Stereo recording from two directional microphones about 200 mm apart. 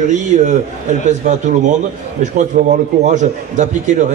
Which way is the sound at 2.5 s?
45° right (ahead or behind).